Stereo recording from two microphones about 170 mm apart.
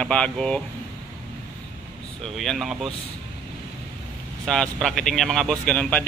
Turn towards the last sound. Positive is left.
turn(degrees=5)  # may be behind; listen again after turning